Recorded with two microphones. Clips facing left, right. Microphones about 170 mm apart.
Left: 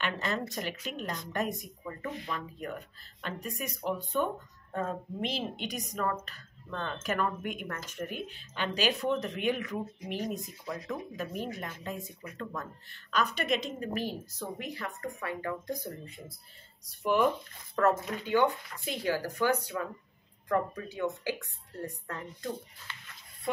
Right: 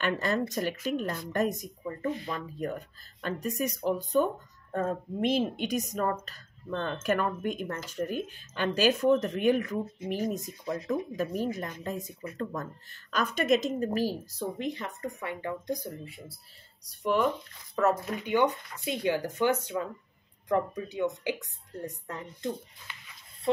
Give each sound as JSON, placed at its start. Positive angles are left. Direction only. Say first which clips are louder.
{"t": 0.0, "sound": "speech", "louder": "right 5 dB", "side_deg": -45}
{"t": 1.9, "sound": "speech", "louder": "right 5 dB", "side_deg": -35}
{"t": 5.9, "sound": "speech", "louder": "right 3 dB", "side_deg": -35}
{"t": 13.1, "sound": "speech", "louder": "right 4 dB", "side_deg": -45}
{"t": 14.3, "sound": "a woman's voice", "louder": "right 6 dB", "side_deg": -30}
{"t": 16.8, "sound": "a woman's voice", "louder": "even", "side_deg": 0}